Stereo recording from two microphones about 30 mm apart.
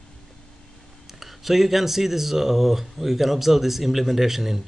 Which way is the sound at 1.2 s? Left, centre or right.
Centre.